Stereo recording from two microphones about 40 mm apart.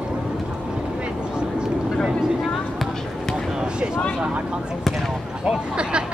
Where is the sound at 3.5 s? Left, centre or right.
Right.